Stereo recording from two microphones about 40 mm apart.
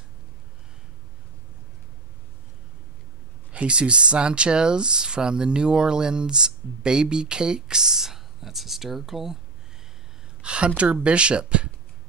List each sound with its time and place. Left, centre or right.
3.5 s speech: right; by 9.4 s centre
10.4 s a woman's voice: right